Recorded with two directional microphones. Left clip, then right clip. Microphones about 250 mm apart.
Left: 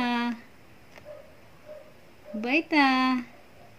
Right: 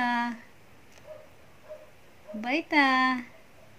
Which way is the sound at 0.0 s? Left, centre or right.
Centre.